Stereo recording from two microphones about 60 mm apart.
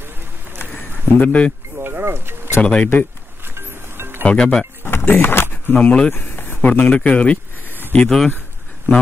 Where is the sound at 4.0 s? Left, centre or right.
Right.